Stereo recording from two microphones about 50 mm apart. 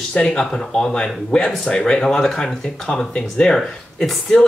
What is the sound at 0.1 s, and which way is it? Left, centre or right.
Speech, left.